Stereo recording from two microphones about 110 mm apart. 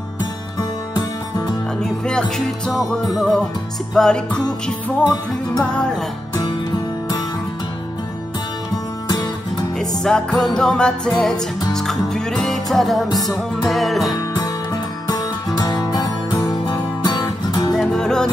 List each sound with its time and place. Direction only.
1.8 s music: 5° left (ahead or behind)
9.8 s music: 5° left (ahead or behind)
15.0 s music: 35° left (ahead or behind)
17.7 s music: 5° left (ahead or behind)